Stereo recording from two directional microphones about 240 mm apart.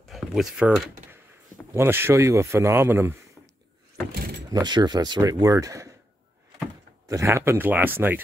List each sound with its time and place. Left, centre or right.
0.1 s speech: centre
4.1 s vehicle: right
4.5 s speech: centre
7.1 s speech: centre